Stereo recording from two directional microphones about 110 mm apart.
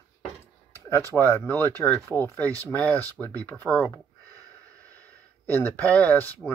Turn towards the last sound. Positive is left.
turn(degrees=15)  # may be behind; listen again after turning